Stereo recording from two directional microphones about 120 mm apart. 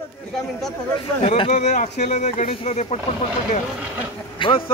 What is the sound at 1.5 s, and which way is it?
Speech, 80° left.